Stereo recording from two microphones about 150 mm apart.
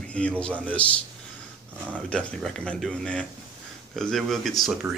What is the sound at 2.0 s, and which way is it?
Speech, 5° left (ahead or behind).